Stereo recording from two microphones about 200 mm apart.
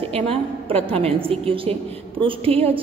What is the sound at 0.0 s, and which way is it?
A woman's voice, 30° right (ahead or behind).